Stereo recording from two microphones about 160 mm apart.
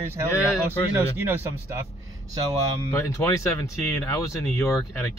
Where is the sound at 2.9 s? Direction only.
15° left (ahead or behind).